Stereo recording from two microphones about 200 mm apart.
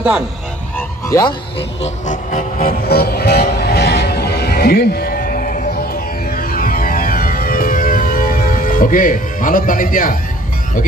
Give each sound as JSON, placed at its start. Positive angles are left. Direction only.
{"t": 0.7, "sound": "music", "side_deg": 15}
{"t": 1.8, "sound": "music", "side_deg": 40}